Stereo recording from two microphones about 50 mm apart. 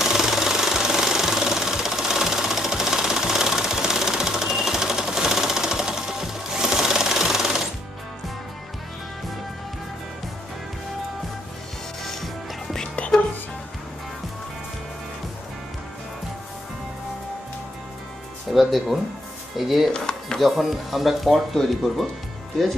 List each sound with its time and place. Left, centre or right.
0.0 s jackhammer: centre
12.0 s music: centre
18.5 s music: centre
19.5 s speech: centre
19.9 s a sound: centre
20.3 s speech: centre